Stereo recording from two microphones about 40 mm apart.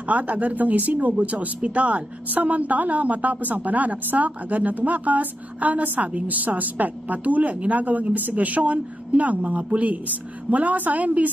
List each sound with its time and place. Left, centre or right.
0.0 s a woman's voice: right